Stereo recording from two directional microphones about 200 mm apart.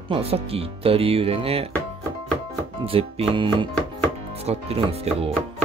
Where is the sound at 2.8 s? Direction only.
30° right (ahead or behind).